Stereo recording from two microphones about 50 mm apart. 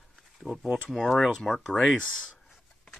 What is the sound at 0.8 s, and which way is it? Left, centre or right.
Speech, centre.